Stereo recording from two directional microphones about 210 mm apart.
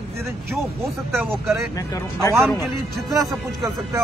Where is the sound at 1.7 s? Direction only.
15° left (ahead or behind).